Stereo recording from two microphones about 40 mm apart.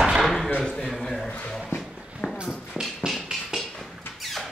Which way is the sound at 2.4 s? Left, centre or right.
Centre.